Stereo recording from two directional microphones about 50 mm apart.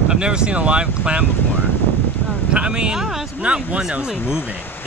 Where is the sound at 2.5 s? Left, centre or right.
Centre.